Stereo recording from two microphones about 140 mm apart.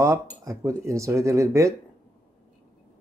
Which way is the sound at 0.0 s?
20° right (ahead or behind).